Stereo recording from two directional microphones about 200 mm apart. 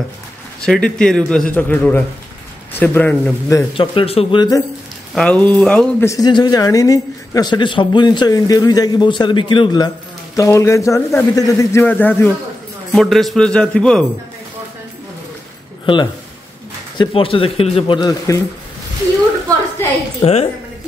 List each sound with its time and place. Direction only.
0.6 s a man's voice: 5° left (ahead or behind)
3.7 s speech: 25° left (ahead or behind)
5.1 s a man's voice: 5° left (ahead or behind)
15.8 s speech: 25° left (ahead or behind)
19.8 s a sound: 10° left (ahead or behind)
20.2 s a woman's voice: 30° left (ahead or behind)